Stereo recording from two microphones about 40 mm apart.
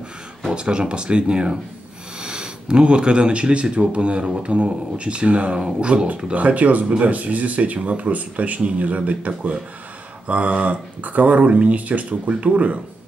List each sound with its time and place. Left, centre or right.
0.5 s speech: right
6.3 s speech: right